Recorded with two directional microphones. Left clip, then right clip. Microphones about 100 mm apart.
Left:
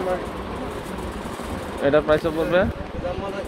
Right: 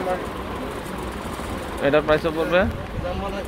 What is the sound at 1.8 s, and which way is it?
Speech, 35° left (ahead or behind).